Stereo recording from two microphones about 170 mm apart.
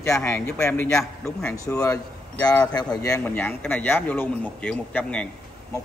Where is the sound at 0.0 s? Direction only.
15° left (ahead or behind).